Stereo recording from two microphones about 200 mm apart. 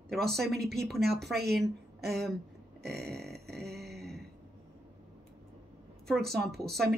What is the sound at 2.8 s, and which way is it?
Burping, 55° right (ahead or behind).